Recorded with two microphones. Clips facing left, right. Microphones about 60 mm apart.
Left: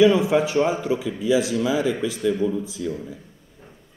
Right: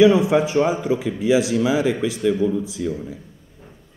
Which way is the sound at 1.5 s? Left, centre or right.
Right.